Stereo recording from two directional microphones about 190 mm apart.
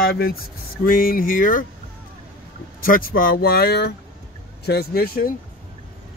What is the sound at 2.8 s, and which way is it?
Speech, 50° left (ahead or behind).